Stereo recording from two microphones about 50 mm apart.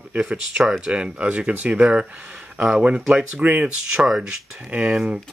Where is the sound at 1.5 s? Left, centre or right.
Right.